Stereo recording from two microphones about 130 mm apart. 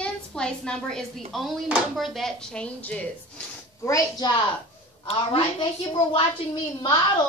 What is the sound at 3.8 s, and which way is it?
Speech, 20° left (ahead or behind).